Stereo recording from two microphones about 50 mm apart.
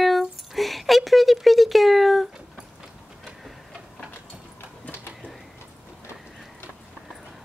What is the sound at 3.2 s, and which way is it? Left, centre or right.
Tick-tock, centre.